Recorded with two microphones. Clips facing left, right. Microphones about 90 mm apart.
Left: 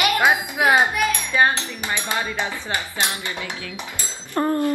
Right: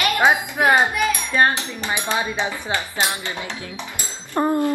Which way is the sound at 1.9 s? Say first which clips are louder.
Right 2 dB; 15° right (ahead or behind).